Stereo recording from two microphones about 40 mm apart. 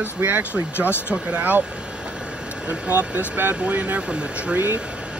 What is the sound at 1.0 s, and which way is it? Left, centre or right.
Speech, right.